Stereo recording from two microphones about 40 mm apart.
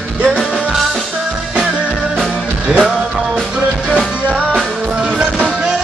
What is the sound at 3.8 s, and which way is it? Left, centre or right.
Music, right.